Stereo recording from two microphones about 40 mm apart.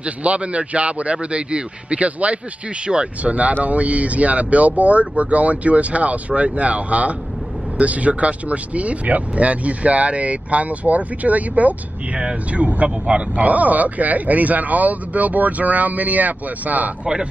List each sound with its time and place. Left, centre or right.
0.0 s speech: right
2.9 s speech: right
3.6 s speech: right
12.2 s speech: right
13.5 s speech: right
17.0 s speech: centre